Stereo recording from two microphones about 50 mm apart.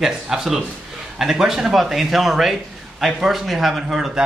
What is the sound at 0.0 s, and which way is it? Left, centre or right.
A man's voice, centre.